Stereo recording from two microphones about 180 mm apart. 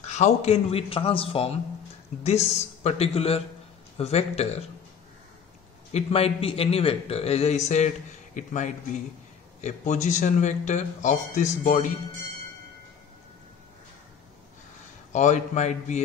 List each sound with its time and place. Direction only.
0.0 s speech: 35° left (ahead or behind)
5.9 s speech: 35° left (ahead or behind)
15.1 s speech: 40° left (ahead or behind)